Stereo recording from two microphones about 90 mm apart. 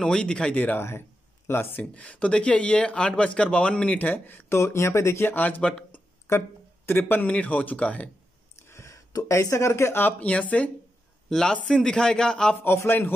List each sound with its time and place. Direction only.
0.0 s a man's voice: 10° left (ahead or behind); by 1.9 s 25° left (ahead or behind)
2.0 s speech: 15° left (ahead or behind)
6.3 s speech: 30° left (ahead or behind); by 8.1 s 15° left (ahead or behind)
8.6 s speech: 35° left (ahead or behind)
10.1 s speech: 15° left (ahead or behind)
12.6 s a man's voice: 25° left (ahead or behind)